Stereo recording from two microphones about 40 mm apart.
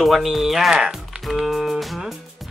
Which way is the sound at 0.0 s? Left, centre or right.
Centre.